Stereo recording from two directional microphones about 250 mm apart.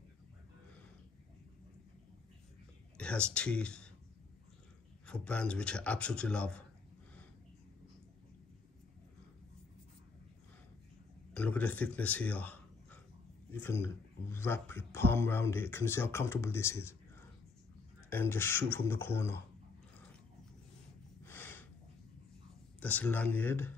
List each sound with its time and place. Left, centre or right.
3.0 s speech: centre
5.0 s speech: centre
11.3 s a man's voice: centre
21.3 s a sound: centre
22.8 s speech: centre